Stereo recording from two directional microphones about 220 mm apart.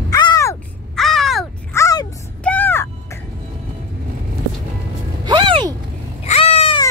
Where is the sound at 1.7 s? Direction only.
15° left (ahead or behind).